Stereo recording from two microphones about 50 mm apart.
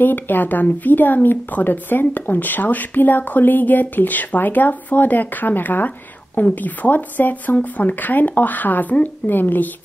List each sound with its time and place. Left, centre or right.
0.0 s speech: left